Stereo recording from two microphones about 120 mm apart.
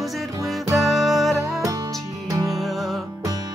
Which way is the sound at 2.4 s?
Centre (ahead or behind).